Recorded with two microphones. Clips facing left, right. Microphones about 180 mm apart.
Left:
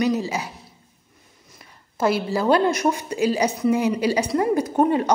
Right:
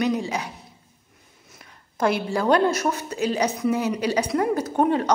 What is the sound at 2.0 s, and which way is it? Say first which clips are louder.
Speech: left 1 dB; 5° left (ahead or behind).